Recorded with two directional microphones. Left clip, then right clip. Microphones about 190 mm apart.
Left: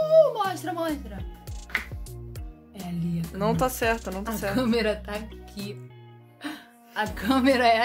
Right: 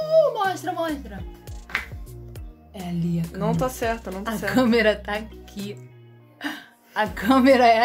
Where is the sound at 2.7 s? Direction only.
5° right (ahead or behind).